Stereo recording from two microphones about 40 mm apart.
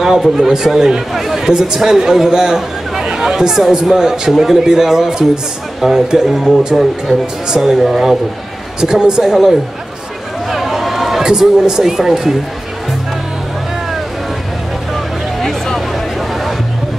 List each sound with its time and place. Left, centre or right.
0.0 s a man's voice: centre
7.1 s a man's voice: centre
7.4 s a man's voice: centre
7.7 s a man's voice: centre
8.8 s a man's voice: centre
10.5 s run: centre
11.2 s a man's voice: centre
15.3 s a sound: centre